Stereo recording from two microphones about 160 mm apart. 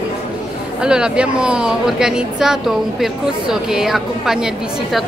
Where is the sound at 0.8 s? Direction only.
5° right (ahead or behind).